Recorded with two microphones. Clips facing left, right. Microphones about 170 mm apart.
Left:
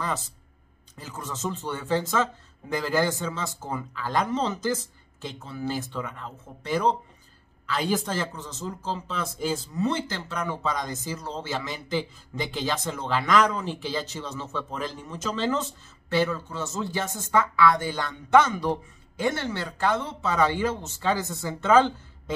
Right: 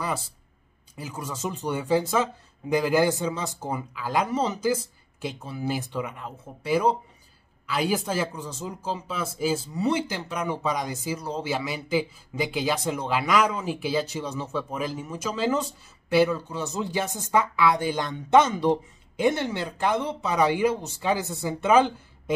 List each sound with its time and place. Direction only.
0.9 s a man's voice: 10° right (ahead or behind)